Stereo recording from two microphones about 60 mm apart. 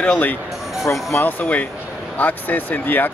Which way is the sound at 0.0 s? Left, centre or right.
Left.